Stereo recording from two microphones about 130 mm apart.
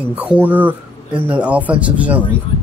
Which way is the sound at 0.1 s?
10° right (ahead or behind).